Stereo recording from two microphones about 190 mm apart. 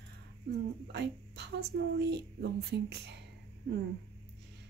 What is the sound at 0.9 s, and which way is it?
A woman's voice, 65° right (ahead or behind).